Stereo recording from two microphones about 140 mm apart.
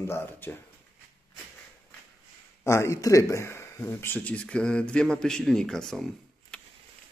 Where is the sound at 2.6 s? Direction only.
20° left (ahead or behind); by 6.1 s 5° left (ahead or behind).